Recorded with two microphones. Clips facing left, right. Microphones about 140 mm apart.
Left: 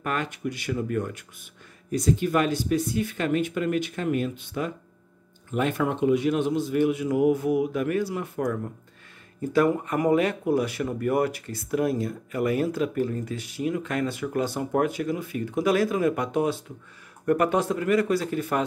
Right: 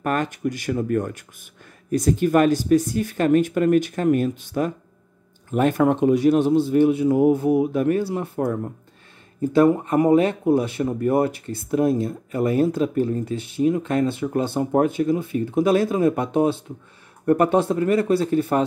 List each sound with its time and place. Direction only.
0.0 s speech: 45° right (ahead or behind)